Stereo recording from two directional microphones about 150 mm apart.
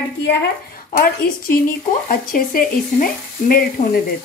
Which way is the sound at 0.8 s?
70° left (ahead or behind).